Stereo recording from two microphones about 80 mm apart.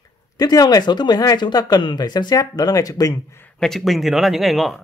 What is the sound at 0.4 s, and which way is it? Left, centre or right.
Speech, left.